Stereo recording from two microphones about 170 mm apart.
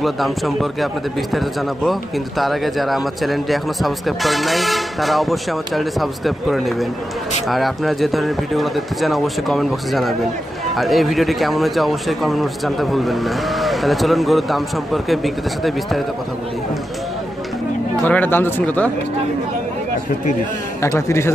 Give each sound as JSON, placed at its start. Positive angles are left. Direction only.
{"t": 0.0, "sound": "speech", "side_deg": 0}
{"t": 1.9, "sound": "speech", "side_deg": 0}
{"t": 18.0, "sound": "speech", "side_deg": 10}
{"t": 20.8, "sound": "speech", "side_deg": 15}